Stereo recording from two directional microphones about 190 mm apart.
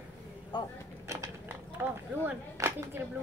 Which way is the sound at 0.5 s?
25° left (ahead or behind).